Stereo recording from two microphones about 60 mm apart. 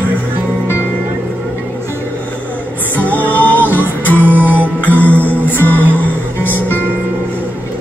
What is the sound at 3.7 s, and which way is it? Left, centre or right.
Music, left.